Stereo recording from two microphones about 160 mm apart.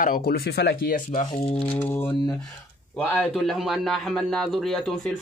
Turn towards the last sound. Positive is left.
turn(degrees=0)  # may be behind; listen again after turning